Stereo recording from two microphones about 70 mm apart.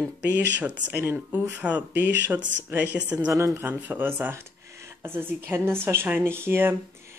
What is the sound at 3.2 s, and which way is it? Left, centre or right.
Speech, right.